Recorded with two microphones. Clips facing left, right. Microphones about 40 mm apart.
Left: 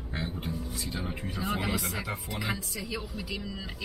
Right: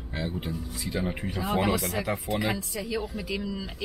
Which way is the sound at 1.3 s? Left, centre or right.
Right.